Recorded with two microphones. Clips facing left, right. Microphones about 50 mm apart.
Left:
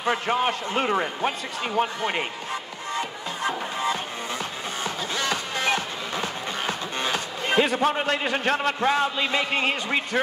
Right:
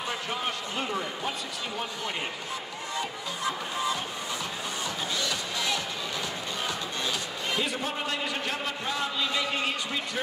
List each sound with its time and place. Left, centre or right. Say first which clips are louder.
0.1 s a man's voice: left 11 dB; left
3.0 s music: left 4 dB; left
5.1 s music: left 5 dB; left
9.2 s music: left 5 dB; left